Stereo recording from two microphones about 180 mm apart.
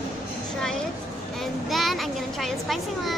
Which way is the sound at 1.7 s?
Centre (ahead or behind).